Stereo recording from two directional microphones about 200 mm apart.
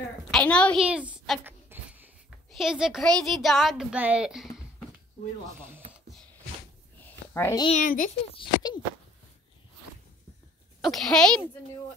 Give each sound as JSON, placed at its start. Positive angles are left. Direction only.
{"t": 0.3, "sound": "a woman's voice", "side_deg": 5}
{"t": 0.8, "sound": "speech", "side_deg": -5}
{"t": 1.4, "sound": "a sound", "side_deg": -10}
{"t": 2.5, "sound": "speech", "side_deg": 0}
{"t": 5.9, "sound": "a sound", "side_deg": 0}
{"t": 7.3, "sound": "a child's voice", "side_deg": 15}
{"t": 7.7, "sound": "a child's voice", "side_deg": 40}
{"t": 8.3, "sound": "speech", "side_deg": 25}
{"t": 10.8, "sound": "speech", "side_deg": 0}